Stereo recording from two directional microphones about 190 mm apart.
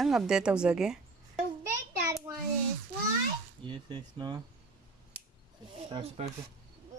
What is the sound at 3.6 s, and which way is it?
Speech, 25° right (ahead or behind).